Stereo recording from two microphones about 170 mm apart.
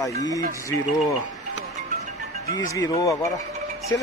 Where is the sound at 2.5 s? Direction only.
20° left (ahead or behind).